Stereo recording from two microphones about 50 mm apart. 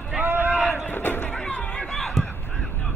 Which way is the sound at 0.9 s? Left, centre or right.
Left.